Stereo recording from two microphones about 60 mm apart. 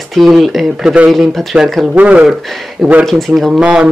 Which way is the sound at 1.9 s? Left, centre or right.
Right.